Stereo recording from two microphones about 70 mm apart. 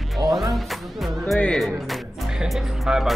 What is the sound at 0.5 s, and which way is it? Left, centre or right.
Music, centre.